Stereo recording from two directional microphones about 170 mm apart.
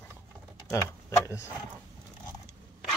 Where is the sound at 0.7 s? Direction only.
15° left (ahead or behind).